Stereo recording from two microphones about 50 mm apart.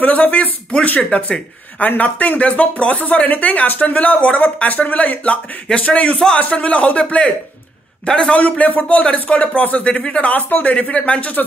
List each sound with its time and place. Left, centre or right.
0.0 s speech: left
6.1 s a man's voice: centre
6.5 s a man's voice: left
8.4 s speech: left
10.3 s speech: left